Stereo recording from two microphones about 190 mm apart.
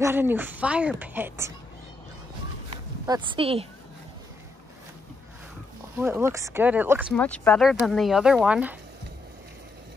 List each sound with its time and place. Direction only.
0.0 s a woman's voice: 10° right (ahead or behind)
3.1 s a woman's voice: 25° right (ahead or behind)
5.9 s a woman's voice: 10° right (ahead or behind)
7.2 s speech: 5° left (ahead or behind)